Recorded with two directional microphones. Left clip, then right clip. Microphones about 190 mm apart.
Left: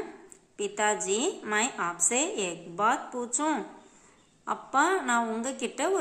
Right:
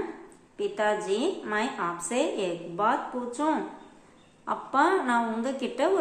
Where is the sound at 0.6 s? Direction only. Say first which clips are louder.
Right 1 dB; 30° left (ahead or behind).